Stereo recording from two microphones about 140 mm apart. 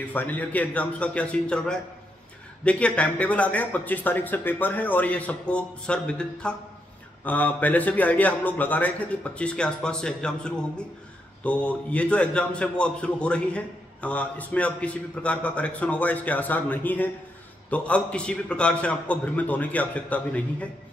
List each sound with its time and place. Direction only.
0.1 s speech: 15° left (ahead or behind)